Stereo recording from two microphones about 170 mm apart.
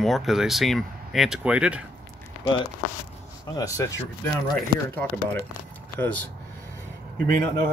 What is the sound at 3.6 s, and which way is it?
Speech, 20° left (ahead or behind).